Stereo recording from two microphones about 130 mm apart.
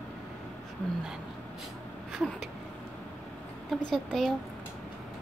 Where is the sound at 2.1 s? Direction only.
Centre (ahead or behind).